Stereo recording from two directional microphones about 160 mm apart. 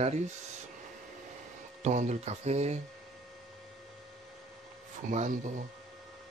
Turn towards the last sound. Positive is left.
turn(degrees=-55)  # may be behind; listen again after turning